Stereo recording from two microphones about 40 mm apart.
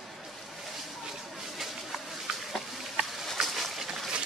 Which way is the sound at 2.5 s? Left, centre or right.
Centre.